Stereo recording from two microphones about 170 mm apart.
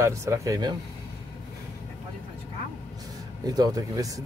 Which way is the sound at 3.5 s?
20° right (ahead or behind).